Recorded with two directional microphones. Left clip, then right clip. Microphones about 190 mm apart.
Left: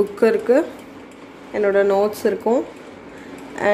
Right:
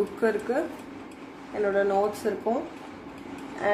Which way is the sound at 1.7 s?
45° left (ahead or behind).